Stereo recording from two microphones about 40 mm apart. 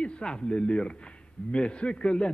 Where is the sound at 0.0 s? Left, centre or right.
Left.